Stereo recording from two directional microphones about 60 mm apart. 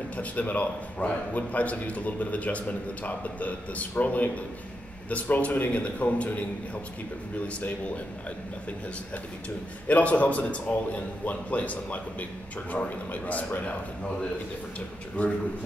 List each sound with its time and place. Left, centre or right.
0.2 s a man's voice: left
9.8 s a man's voice: left
15.2 s a man's voice: left